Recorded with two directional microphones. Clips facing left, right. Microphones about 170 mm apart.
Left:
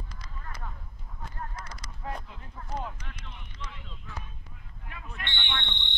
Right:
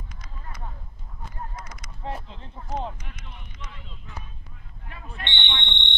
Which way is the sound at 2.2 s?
25° right (ahead or behind).